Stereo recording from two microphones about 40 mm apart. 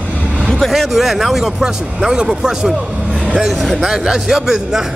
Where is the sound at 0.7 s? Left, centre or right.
Centre.